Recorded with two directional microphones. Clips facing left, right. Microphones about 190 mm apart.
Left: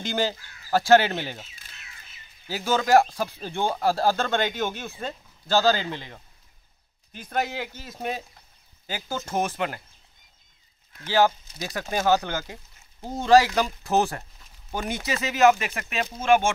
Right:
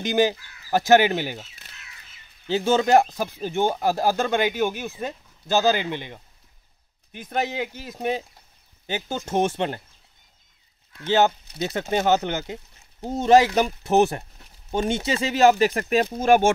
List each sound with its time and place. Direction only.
0.0 s speech: 15° right (ahead or behind)
2.4 s speech: 25° right (ahead or behind)
11.1 s speech: 20° right (ahead or behind); by 16.5 s 40° right (ahead or behind)